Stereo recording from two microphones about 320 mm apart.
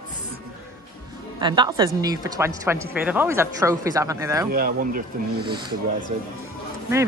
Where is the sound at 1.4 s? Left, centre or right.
Centre.